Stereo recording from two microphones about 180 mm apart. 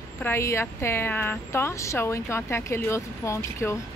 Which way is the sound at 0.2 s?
15° left (ahead or behind).